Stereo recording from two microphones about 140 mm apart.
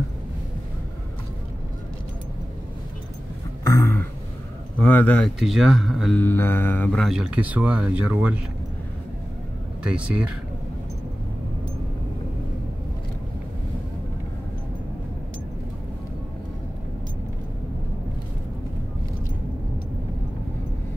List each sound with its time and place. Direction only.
3.6 s a sound: 20° left (ahead or behind)
4.7 s mantra: 10° left (ahead or behind)
5.4 s speech: centre (ahead or behind)
6.1 s mantra: 15° left (ahead or behind)
7.0 s speech: centre (ahead or behind)
9.8 s speech: 10° right (ahead or behind)